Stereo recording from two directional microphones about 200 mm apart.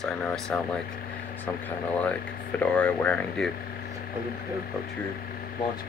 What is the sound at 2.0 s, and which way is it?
Speech, 5° left (ahead or behind).